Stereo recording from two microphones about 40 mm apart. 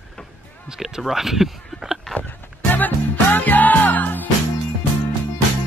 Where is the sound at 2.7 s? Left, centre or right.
Left.